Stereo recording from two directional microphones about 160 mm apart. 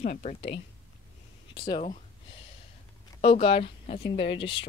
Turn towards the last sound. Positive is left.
turn(degrees=30)  # may be behind; listen again after turning